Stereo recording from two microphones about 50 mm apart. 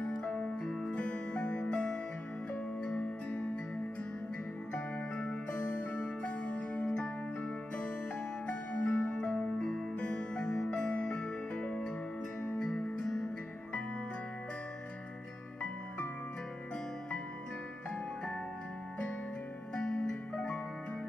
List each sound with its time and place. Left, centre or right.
0.0 s music: left
0.7 s music: centre
0.9 s music: left
4.7 s music: left
8.5 s music: left
19.7 s music: centre